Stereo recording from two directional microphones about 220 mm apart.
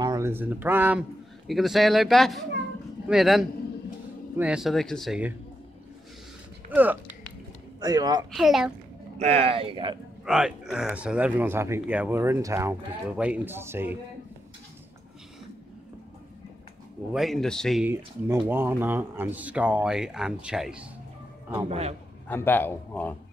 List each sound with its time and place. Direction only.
0.0 s speech: 15° right (ahead or behind)
6.7 s speech: 10° right (ahead or behind)
8.4 s speech: centre (ahead or behind)
9.2 s speech: 25° right (ahead or behind)
10.2 s speech: 5° right (ahead or behind)
17.1 s speech: centre (ahead or behind)
21.6 s speech: 30° right (ahead or behind)
22.3 s a man's voice: 10° left (ahead or behind)